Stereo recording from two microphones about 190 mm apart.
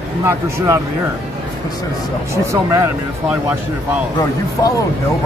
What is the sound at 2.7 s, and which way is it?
Speech, 10° right (ahead or behind).